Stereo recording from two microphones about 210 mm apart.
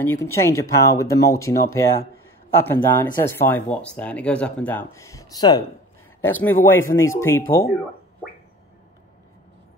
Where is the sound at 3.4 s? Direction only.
10° left (ahead or behind).